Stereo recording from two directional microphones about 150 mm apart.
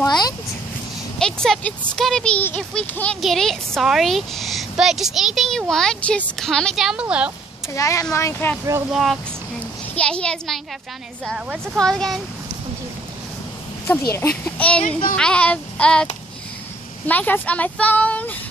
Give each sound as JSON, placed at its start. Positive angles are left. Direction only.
{"t": 0.0, "sound": "a sound", "side_deg": 25}
{"t": 1.2, "sound": "speech", "side_deg": 5}
{"t": 7.7, "sound": "speech", "side_deg": 20}
{"t": 8.9, "sound": "speech", "side_deg": 0}
{"t": 14.4, "sound": "speech", "side_deg": 10}
{"t": 14.8, "sound": "speech", "side_deg": 40}
{"t": 15.1, "sound": "speech", "side_deg": 5}